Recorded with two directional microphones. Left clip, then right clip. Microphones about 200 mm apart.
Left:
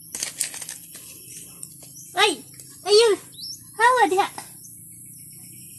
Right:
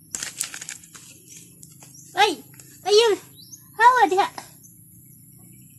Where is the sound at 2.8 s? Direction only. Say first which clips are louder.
Left 1 dB; 30° left (ahead or behind).